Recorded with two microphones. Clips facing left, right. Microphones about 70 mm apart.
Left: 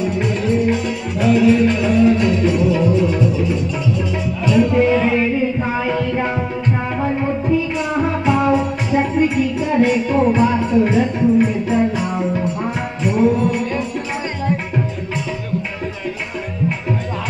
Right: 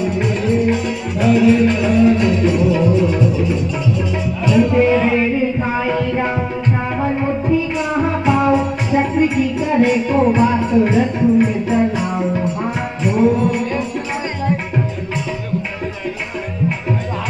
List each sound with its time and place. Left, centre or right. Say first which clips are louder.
0.0 s music: right 1 dB; centre; by 7.5 s right
7.5 s music: right 1 dB; centre
13.0 s music: right 1 dB; centre